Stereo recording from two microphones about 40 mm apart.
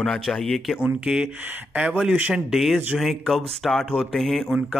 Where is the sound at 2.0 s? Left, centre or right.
Right.